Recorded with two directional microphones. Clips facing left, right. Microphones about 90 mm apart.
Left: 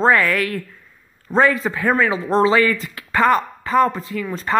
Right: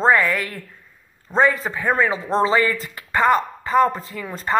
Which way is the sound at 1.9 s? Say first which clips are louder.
Left 1 dB; 35° right (ahead or behind).